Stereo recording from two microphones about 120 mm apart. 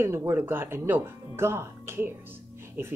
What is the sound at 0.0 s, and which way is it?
A woman's voice, 20° right (ahead or behind).